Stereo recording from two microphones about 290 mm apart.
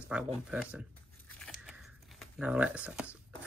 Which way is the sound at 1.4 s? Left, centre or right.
Centre.